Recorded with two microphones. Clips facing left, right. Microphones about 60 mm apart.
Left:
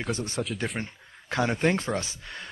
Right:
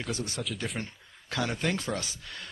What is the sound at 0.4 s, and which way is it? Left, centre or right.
Speech, left.